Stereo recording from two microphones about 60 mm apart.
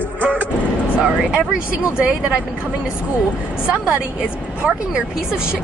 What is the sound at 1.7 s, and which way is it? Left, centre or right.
Speech, right.